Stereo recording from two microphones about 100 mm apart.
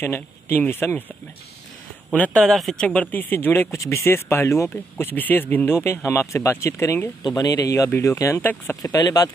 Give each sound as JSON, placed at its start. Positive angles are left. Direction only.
{"t": 0.0, "sound": "speech", "side_deg": 20}
{"t": 2.1, "sound": "speech", "side_deg": 15}
{"t": 2.4, "sound": "speech", "side_deg": 5}
{"t": 7.2, "sound": "speech", "side_deg": 40}
{"t": 8.4, "sound": "speech", "side_deg": 20}
{"t": 8.8, "sound": "speech", "side_deg": 40}